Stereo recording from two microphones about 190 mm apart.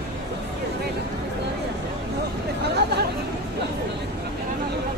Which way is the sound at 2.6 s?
60° right (ahead or behind).